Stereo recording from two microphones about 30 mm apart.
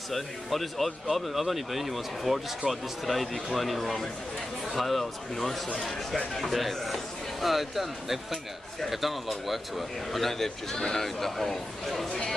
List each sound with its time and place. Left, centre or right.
0.1 s a man's voice: centre
12.1 s speech: left